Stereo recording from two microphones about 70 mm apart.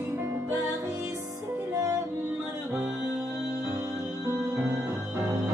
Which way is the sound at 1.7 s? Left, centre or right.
Right.